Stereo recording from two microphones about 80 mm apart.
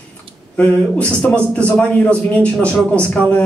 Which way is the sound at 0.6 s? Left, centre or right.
Centre.